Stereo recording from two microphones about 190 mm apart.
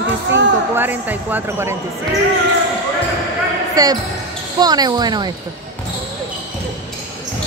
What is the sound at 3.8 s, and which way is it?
Speech, 20° right (ahead or behind).